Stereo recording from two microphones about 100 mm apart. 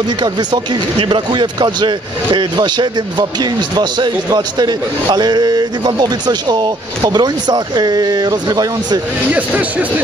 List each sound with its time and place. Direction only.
0.2 s speech: 45° right (ahead or behind)
9.3 s speech: 15° right (ahead or behind)